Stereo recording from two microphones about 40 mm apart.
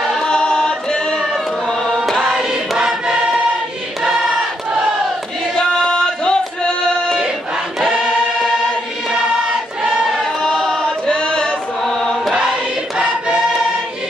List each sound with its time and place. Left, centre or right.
0.1 s choir: centre
2.9 s choir: centre
5.6 s music: centre
9.4 s choir: right
10.4 s choir: centre
11.1 s chant: centre
12.4 s choir: right